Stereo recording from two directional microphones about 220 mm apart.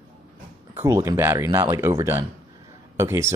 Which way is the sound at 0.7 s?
10° right (ahead or behind).